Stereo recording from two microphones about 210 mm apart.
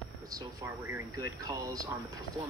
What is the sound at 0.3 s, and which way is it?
Speech, 15° right (ahead or behind).